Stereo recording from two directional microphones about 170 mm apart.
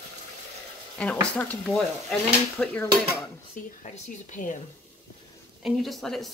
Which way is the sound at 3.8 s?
50° left (ahead or behind).